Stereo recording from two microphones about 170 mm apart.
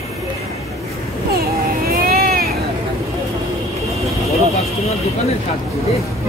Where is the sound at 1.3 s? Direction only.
65° right (ahead or behind).